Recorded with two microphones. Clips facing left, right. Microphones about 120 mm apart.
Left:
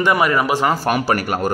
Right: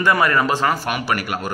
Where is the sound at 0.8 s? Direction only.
40° left (ahead or behind).